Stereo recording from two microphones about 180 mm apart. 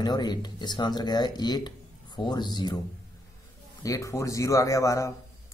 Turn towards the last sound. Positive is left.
turn(degrees=15)  # may be behind; listen again after turning